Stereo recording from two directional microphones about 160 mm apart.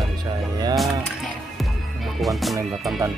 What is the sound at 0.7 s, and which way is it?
Speech, centre (ahead or behind).